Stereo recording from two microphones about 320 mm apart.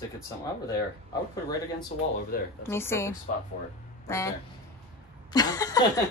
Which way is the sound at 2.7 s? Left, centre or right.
Centre.